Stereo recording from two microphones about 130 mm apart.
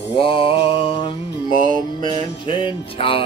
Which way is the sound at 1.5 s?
90° right.